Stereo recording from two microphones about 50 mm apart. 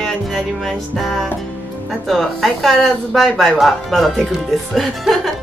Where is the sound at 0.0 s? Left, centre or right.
Centre.